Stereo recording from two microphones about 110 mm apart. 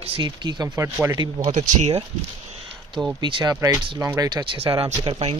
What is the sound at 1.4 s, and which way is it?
Speech, 80° right.